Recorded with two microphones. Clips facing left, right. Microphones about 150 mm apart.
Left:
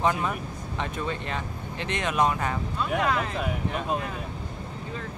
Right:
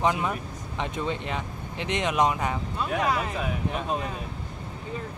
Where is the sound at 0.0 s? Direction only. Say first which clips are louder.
Even; 15° right (ahead or behind).